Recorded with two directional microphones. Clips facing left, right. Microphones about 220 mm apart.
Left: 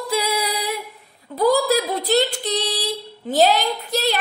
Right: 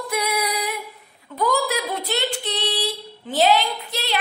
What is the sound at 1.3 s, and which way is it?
A woman's voice, 35° left (ahead or behind).